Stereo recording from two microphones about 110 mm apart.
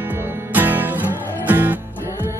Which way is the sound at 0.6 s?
15° right (ahead or behind).